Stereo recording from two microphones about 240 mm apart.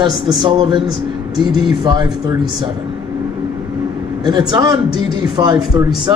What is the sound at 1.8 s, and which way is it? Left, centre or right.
Speech, centre.